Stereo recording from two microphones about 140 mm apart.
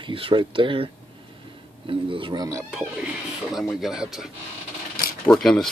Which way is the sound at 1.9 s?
35° right (ahead or behind).